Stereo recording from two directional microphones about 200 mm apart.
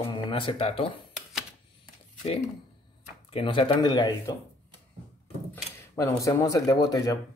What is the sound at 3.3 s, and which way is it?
Speech, 30° left (ahead or behind).